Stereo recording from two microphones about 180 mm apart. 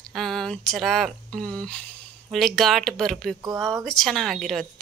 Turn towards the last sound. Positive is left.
turn(degrees=0)  # may be behind; listen again after turning